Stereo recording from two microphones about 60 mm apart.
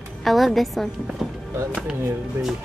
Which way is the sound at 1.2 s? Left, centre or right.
Centre.